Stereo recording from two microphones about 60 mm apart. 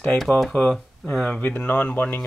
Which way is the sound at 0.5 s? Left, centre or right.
Centre.